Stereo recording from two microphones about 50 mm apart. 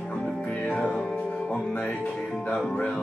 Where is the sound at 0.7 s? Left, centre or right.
Centre.